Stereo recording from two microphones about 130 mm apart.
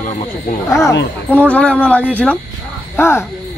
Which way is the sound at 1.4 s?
10° left (ahead or behind).